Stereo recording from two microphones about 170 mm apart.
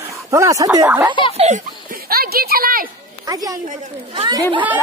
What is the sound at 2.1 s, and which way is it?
Speech, 60° right (ahead or behind).